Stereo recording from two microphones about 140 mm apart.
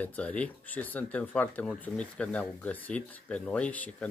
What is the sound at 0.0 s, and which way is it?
Speech, 10° left (ahead or behind).